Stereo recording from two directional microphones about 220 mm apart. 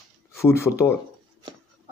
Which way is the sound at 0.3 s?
10° left (ahead or behind).